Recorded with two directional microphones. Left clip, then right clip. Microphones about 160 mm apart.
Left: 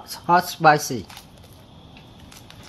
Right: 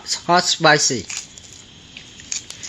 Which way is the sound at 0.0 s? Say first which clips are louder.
Right 2 dB; 30° right (ahead or behind).